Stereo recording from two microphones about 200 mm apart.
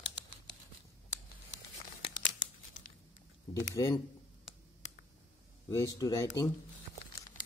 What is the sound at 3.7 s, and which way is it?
Speech, 15° left (ahead or behind).